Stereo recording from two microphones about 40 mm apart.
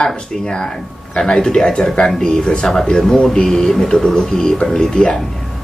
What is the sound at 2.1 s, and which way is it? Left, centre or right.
Speech, centre.